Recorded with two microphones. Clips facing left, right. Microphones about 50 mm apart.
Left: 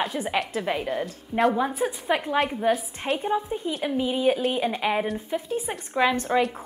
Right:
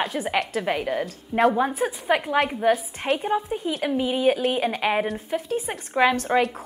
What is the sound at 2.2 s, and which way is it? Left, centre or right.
A woman's voice, centre.